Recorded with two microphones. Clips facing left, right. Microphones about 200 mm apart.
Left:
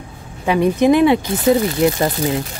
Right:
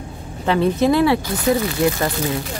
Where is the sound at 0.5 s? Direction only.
15° left (ahead or behind).